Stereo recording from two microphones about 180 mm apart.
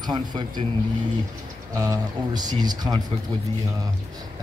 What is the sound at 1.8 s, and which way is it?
Speech, 20° right (ahead or behind).